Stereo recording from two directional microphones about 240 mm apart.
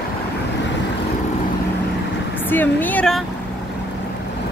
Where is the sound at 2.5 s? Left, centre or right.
Centre.